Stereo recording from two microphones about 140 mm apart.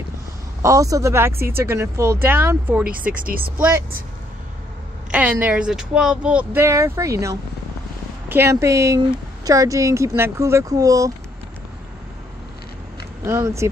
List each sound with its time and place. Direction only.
0.6 s speech: 20° right (ahead or behind)
3.2 s speech: 85° right
5.1 s speech: 10° right (ahead or behind)
13.2 s speech: 20° right (ahead or behind)